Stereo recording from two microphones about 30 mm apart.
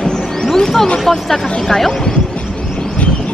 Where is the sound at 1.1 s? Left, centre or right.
Centre.